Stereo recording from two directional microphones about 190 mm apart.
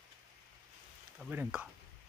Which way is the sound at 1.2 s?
5° right (ahead or behind).